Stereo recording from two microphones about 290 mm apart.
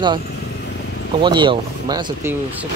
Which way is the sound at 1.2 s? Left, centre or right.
Centre.